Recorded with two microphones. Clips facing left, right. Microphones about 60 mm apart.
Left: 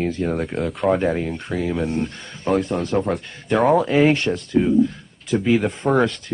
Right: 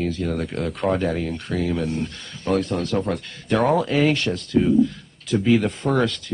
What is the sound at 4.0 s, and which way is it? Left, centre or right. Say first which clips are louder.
Speech: left 3 dB; left.